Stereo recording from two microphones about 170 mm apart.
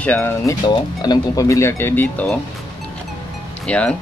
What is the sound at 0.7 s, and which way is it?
Speech, 25° left (ahead or behind).